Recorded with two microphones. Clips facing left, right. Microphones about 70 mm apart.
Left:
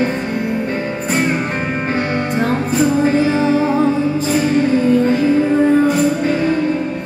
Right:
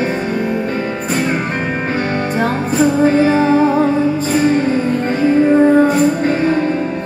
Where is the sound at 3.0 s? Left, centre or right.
Right.